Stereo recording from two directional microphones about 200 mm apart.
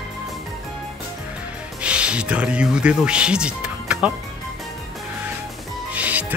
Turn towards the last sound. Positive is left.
turn(degrees=-5)  # may be behind; listen again after turning